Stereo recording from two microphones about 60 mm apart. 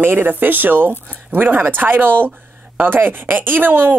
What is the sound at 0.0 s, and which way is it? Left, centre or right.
Speech, right.